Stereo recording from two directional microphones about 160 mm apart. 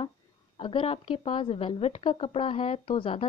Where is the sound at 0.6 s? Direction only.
35° left (ahead or behind).